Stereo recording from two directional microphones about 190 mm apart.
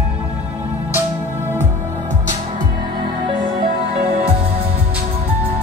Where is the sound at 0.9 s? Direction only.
10° right (ahead or behind).